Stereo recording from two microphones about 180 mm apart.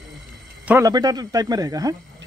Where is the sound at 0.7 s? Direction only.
15° right (ahead or behind).